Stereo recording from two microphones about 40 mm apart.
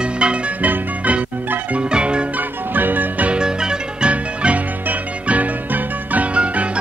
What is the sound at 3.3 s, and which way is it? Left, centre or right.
Music, right.